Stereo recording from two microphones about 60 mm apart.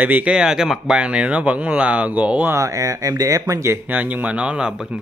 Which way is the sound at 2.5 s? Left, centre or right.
Right.